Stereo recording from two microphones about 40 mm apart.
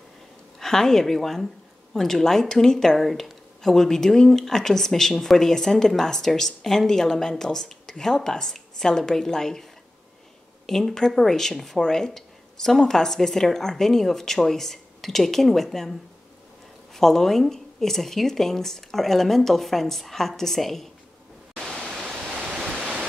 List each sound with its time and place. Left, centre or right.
0.6 s speech: centre
3.0 s speech: centre
10.7 s speech: centre
16.9 s speech: centre
21.7 s pink noise: centre